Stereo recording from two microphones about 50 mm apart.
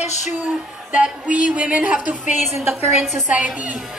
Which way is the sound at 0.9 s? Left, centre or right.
Right.